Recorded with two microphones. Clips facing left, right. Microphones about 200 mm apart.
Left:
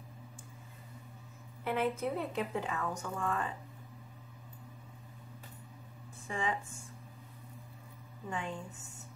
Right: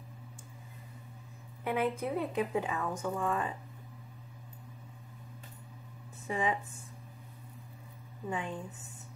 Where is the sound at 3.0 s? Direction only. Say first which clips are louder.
Right 3 dB; 15° right (ahead or behind).